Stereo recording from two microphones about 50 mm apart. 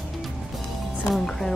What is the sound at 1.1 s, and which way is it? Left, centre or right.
Speech, centre.